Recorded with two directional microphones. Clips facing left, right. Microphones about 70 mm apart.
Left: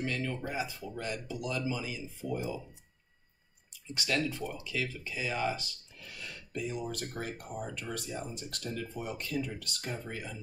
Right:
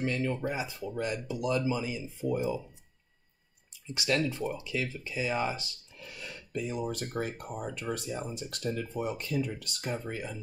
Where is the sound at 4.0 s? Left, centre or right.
Right.